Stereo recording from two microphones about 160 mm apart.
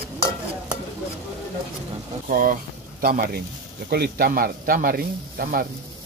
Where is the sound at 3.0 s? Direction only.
75° right (ahead or behind).